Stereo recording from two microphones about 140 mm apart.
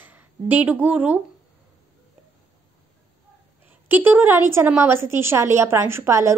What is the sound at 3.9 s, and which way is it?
A woman's voice, 15° right (ahead or behind).